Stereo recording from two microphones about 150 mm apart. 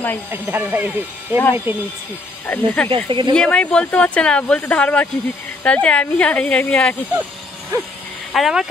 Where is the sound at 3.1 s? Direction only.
30° right (ahead or behind).